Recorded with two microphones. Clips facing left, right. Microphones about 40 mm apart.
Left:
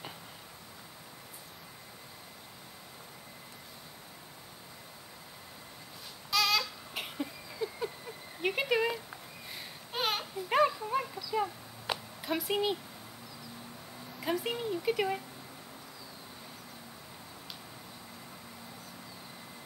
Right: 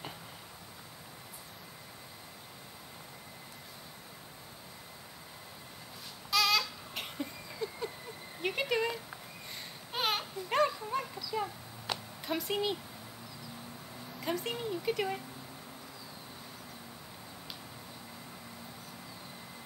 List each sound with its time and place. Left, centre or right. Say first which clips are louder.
6.3 s a sound: even; centre
8.4 s babbling: left 2 dB; centre
14.2 s speech: left 2 dB; centre